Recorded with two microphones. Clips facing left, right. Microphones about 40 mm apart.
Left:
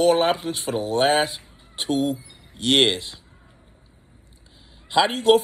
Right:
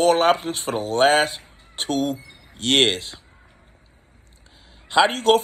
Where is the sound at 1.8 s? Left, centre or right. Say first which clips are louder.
Left 1 dB; right.